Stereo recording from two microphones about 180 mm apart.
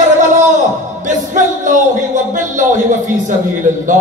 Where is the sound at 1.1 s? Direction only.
45° right (ahead or behind).